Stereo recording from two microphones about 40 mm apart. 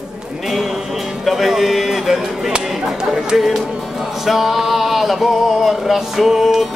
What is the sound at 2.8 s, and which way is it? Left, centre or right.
Chatter, centre.